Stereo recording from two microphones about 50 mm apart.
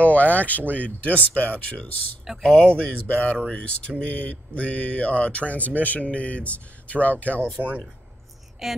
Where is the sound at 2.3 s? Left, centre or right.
Centre.